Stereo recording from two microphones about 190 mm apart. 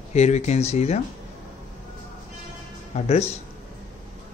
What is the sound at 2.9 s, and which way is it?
Speech, 35° left (ahead or behind).